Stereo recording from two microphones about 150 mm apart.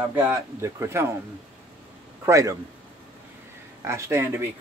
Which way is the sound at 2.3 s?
20° right (ahead or behind).